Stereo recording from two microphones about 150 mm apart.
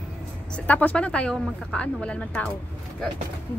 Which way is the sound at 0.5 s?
10° left (ahead or behind).